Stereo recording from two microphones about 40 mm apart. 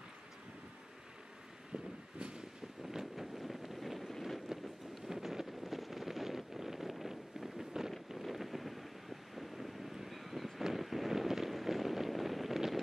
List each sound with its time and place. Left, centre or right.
2.1 s vehicle: right
2.8 s wind: centre
4.5 s wind noise: centre
5.0 s a sound: centre
8.2 s wind: centre
10.6 s a sound: centre